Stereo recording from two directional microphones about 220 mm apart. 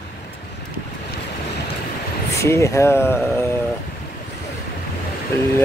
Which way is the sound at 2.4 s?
15° left (ahead or behind).